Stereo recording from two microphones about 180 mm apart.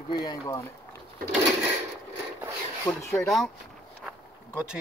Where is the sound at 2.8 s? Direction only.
15° left (ahead or behind).